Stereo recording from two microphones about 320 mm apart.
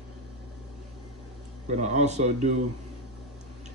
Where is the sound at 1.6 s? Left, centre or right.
Right.